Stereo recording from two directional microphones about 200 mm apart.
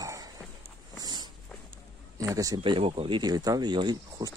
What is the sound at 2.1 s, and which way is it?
Speech, 15° right (ahead or behind).